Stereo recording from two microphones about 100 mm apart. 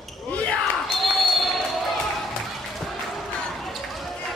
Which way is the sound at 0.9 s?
Centre (ahead or behind).